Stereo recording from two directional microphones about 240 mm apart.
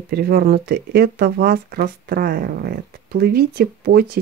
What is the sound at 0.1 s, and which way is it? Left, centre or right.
Speech, right.